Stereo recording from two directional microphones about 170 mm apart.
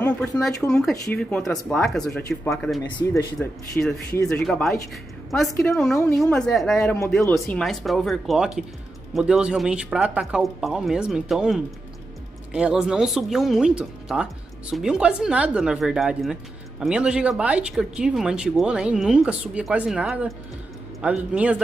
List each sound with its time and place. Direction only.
0.0 s speech: 5° left (ahead or behind)
7.6 s a man's voice: centre (ahead or behind)